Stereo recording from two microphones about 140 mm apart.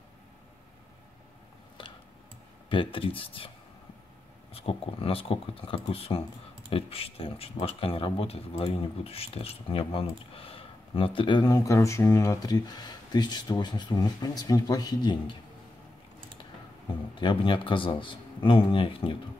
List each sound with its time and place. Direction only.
2.7 s speech: 40° left (ahead or behind)
4.6 s speech: 45° left (ahead or behind)
17.1 s speech: 35° left (ahead or behind)